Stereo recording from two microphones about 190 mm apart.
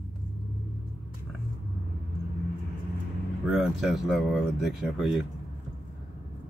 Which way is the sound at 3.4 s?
Centre (ahead or behind).